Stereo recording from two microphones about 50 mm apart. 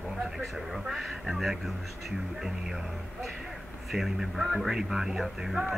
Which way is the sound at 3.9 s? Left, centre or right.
Centre.